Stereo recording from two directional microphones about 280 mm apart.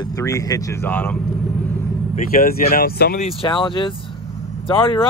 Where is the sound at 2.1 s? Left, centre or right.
Left.